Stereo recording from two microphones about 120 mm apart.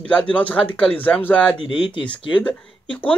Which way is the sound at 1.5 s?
45° left (ahead or behind).